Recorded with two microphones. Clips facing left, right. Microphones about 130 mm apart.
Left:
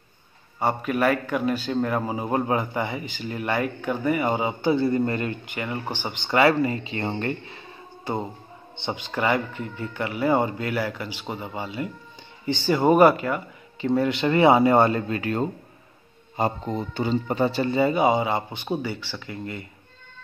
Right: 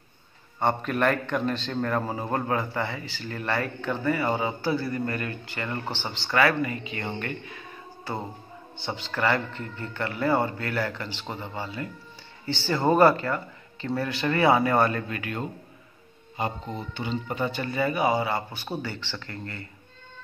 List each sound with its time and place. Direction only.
0.6 s a man's voice: 5° left (ahead or behind)